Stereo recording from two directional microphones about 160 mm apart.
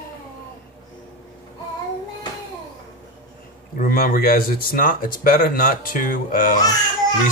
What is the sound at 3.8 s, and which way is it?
Speech, 65° left (ahead or behind).